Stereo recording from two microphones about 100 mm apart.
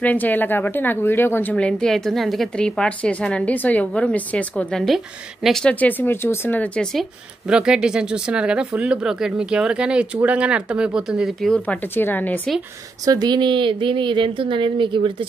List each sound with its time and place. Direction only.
0.0 s a woman's voice: 15° left (ahead or behind)
7.4 s speech: 10° right (ahead or behind)
11.6 s a woman's voice: 20° left (ahead or behind)
13.0 s a woman's voice: 40° right (ahead or behind); by 15.2 s 55° right (ahead or behind)